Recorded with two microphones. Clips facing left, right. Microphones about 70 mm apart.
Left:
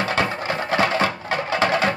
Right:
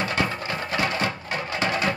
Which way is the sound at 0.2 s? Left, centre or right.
Left.